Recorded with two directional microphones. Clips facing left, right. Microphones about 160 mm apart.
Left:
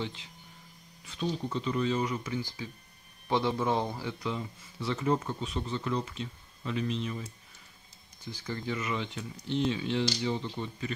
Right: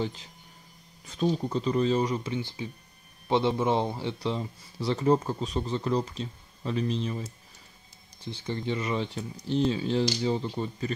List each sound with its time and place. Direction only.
0.0 s speech: 40° right (ahead or behind)